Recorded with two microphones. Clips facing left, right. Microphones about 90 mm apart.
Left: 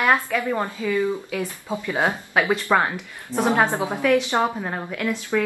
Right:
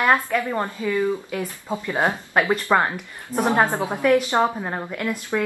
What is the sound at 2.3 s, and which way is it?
A woman's voice, centre (ahead or behind).